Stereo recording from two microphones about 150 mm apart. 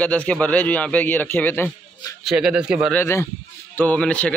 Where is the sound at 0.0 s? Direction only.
10° left (ahead or behind).